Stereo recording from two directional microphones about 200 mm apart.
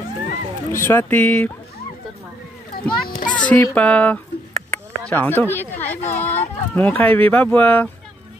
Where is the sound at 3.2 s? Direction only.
40° left (ahead or behind).